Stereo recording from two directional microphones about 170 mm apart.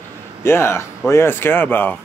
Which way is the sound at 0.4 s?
15° left (ahead or behind).